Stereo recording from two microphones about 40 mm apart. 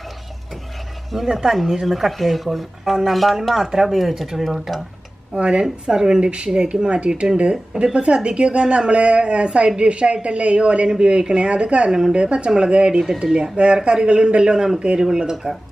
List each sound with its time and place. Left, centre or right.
1.1 s speech: centre
5.3 s speech: right